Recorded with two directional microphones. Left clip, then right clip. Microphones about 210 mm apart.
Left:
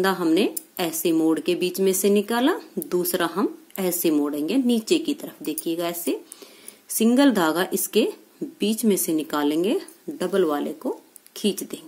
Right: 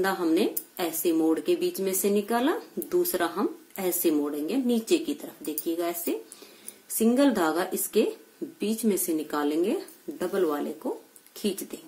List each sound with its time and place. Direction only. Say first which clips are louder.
0.0 s speech: left 4 dB; 35° left (ahead or behind)